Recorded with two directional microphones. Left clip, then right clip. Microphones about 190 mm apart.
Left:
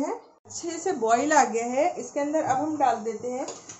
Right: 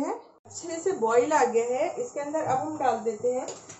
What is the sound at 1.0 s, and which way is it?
Speech, 55° left (ahead or behind).